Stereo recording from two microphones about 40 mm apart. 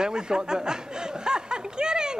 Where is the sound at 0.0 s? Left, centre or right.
Centre.